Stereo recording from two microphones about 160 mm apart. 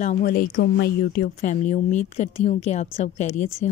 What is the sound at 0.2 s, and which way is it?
Speech, 70° left (ahead or behind).